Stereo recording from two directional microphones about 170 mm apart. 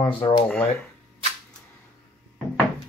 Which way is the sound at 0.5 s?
Centre (ahead or behind).